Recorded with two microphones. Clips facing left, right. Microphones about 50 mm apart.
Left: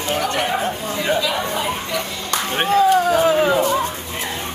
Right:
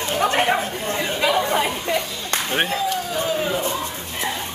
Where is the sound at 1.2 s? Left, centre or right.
Right.